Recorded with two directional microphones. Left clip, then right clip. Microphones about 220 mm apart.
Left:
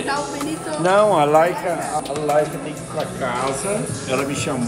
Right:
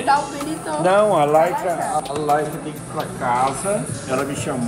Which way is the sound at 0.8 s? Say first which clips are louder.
Even; 5° left (ahead or behind).